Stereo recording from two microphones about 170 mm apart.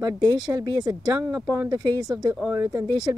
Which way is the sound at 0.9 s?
5° right (ahead or behind).